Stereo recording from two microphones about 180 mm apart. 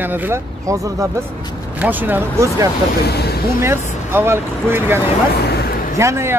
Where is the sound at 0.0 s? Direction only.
10° right (ahead or behind).